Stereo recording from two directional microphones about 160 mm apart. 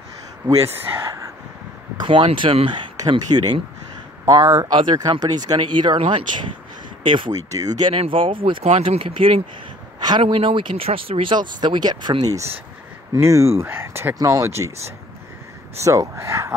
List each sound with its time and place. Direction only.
0.7 s a sound: 20° right (ahead or behind)
2.0 s speech: 30° right (ahead or behind)
7.9 s speech: 35° right (ahead or behind)
9.9 s a sound: 25° right (ahead or behind)
10.2 s speech: 35° right (ahead or behind); by 14.7 s 20° right (ahead or behind)
15.8 s speech: 20° right (ahead or behind)